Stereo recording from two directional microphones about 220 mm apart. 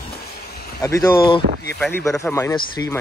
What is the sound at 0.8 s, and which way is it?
Speech, 15° left (ahead or behind).